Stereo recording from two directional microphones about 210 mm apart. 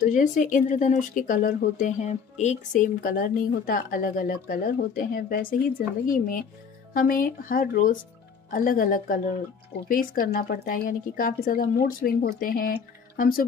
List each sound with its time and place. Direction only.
0.0 s speech: 40° left (ahead or behind)